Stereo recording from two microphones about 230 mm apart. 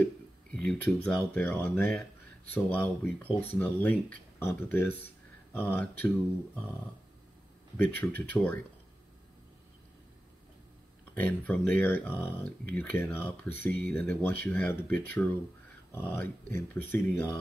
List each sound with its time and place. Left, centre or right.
0.0 s a sound: centre
1.0 s speech: centre
7.7 s speech: centre
11.1 s speech: centre